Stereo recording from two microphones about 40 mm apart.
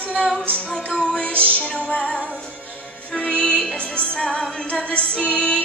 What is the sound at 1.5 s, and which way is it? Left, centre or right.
Music, left.